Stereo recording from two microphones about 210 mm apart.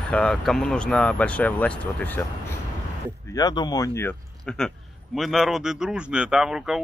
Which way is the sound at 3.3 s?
20° left (ahead or behind).